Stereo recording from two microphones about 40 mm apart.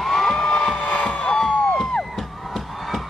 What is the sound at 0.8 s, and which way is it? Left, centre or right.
Crowd, left.